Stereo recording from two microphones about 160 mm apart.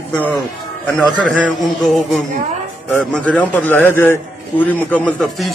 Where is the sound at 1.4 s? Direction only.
Centre (ahead or behind).